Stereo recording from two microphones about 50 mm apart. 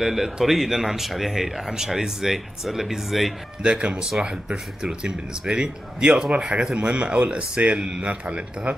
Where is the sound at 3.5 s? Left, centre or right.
Centre.